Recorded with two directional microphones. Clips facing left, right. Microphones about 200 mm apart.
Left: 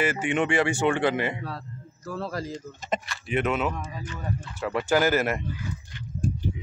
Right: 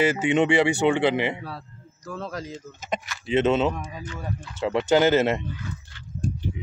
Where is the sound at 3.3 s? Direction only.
25° right (ahead or behind).